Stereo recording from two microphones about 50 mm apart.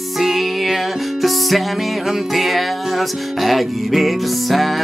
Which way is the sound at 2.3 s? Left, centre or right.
Centre.